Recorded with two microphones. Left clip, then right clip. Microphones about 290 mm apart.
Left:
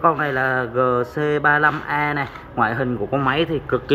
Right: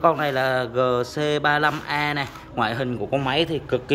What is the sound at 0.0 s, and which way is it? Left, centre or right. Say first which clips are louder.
A man's voice: left 2 dB; centre.